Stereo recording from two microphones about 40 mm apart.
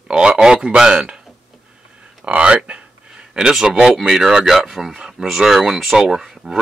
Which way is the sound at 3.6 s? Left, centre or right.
Centre.